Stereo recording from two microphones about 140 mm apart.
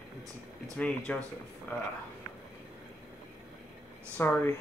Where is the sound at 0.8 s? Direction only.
10° left (ahead or behind).